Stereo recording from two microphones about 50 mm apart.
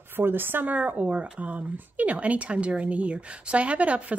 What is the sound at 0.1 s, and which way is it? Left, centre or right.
Speech, right.